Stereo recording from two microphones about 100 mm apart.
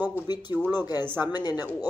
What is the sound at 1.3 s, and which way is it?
Speech, 45° left (ahead or behind).